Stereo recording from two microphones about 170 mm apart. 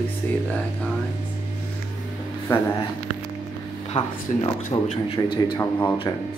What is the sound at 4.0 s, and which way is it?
A man's voice, 30° left (ahead or behind).